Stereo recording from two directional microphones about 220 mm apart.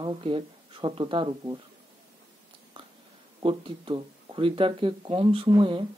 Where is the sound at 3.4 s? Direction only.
20° right (ahead or behind).